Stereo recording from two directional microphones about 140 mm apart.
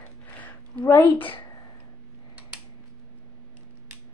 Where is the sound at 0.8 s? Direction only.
15° left (ahead or behind).